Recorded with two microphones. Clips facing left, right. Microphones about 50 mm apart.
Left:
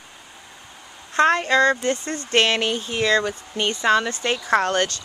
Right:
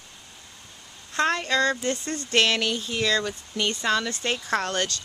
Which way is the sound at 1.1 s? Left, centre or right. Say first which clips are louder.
Left 6 dB; centre.